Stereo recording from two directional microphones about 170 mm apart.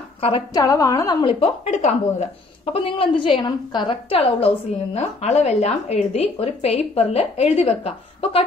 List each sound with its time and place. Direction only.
0.5 s a woman's voice: 20° left (ahead or behind)
1.2 s speech: 40° left (ahead or behind)